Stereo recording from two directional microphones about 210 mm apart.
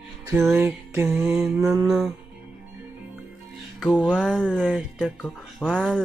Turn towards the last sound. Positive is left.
turn(degrees=0)  # may be behind; listen again after turning